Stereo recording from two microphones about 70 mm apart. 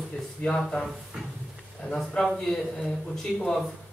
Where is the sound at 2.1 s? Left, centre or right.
Centre.